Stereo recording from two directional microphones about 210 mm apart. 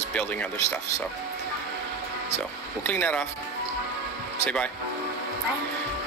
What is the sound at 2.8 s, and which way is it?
Speech, 10° left (ahead or behind).